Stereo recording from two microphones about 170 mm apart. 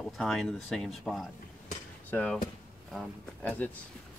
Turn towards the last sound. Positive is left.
turn(degrees=10)  # may be behind; listen again after turning